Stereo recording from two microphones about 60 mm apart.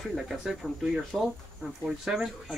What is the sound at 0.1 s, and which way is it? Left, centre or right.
Speech, centre.